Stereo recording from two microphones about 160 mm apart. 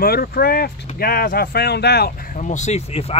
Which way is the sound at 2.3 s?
50° left (ahead or behind).